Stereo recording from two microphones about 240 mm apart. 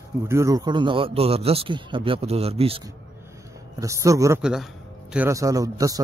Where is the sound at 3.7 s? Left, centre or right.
Centre.